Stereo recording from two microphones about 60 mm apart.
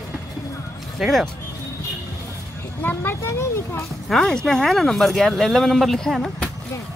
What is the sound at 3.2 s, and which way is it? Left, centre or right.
Speech, left.